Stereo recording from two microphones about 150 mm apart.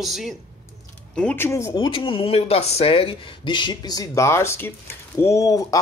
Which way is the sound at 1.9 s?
35° left (ahead or behind).